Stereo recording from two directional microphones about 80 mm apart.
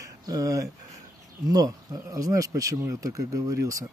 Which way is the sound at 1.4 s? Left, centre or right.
Right.